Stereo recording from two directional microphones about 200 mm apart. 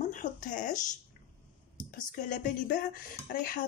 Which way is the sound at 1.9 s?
40° left (ahead or behind).